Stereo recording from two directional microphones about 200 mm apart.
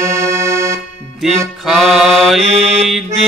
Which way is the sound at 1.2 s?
Centre (ahead or behind).